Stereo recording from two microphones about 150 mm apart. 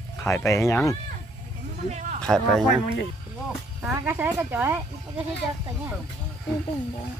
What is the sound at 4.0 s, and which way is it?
Speech, 15° right (ahead or behind).